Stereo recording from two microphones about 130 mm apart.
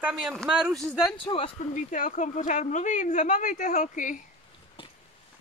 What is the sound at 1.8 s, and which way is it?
Speech, 80° left.